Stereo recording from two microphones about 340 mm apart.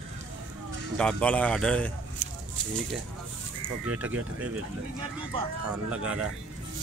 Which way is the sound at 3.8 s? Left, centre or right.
Centre.